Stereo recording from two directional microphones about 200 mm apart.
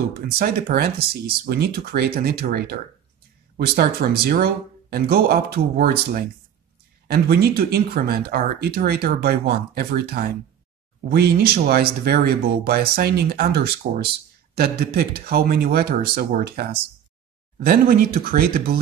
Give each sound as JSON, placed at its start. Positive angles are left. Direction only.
{"t": 0.1, "sound": "speech", "side_deg": -45}